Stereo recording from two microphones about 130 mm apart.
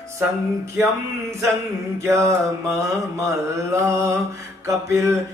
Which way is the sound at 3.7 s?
25° right (ahead or behind).